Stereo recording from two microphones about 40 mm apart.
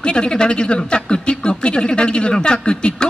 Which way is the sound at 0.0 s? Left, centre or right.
Left.